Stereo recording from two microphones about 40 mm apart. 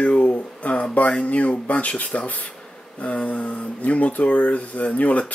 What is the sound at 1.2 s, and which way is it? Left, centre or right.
Speech, left.